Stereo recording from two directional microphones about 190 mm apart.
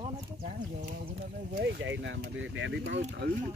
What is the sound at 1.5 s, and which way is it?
Speech, 65° right (ahead or behind).